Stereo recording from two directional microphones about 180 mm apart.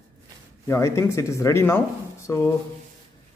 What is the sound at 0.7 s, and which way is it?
Speech, 15° left (ahead or behind).